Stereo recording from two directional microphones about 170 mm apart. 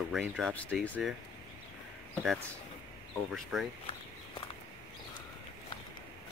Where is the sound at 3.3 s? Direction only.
5° right (ahead or behind).